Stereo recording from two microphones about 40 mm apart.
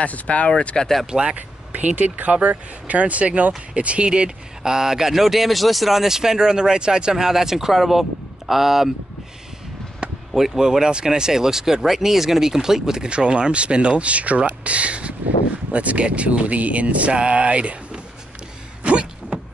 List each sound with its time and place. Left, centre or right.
0.0 s speech: left
0.7 s speech: centre
1.3 s speech: right; by 8.9 s centre
10.3 s speech: centre; by 18.0 s right
18.9 s a sound: right